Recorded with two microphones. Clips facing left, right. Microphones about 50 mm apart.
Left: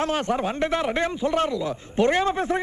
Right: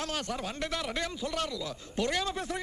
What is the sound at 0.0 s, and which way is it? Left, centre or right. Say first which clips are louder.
A man's voice: left 11 dB; left.